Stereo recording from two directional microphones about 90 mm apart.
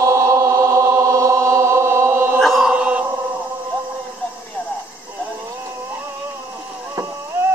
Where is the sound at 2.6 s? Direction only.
15° right (ahead or behind).